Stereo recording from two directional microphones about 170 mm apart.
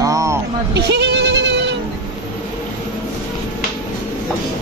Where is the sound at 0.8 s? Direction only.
85° right.